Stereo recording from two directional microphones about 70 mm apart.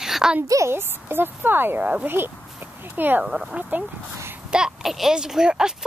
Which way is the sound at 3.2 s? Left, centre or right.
Centre.